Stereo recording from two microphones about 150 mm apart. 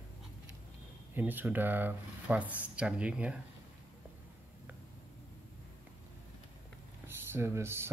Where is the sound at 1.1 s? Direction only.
15° right (ahead or behind).